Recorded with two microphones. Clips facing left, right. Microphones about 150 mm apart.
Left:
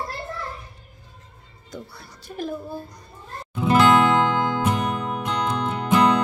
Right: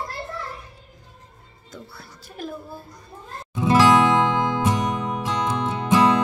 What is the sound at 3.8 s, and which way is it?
Music, 15° right (ahead or behind).